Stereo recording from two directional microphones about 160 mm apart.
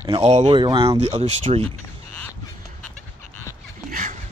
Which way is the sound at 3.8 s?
60° right (ahead or behind).